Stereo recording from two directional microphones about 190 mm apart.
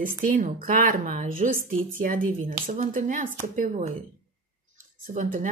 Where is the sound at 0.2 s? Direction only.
45° right (ahead or behind).